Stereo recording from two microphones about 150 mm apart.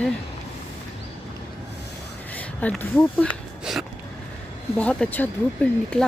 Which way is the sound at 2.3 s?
10° left (ahead or behind).